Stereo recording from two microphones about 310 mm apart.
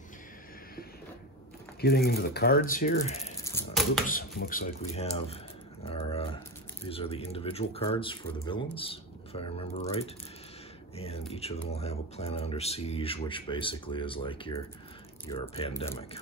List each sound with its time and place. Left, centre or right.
1.8 s speech: left
3.4 s chopping: centre
4.1 s speech: left
5.9 s a sound: centre
6.9 s speech: centre